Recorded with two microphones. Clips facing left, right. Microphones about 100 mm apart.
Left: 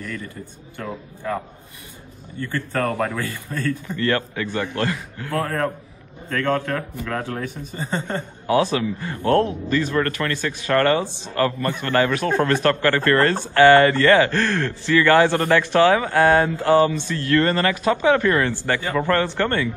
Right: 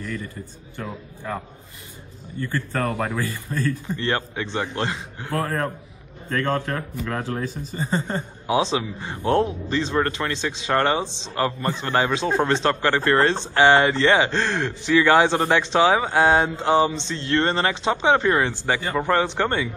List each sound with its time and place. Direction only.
2.4 s speech: 20° right (ahead or behind)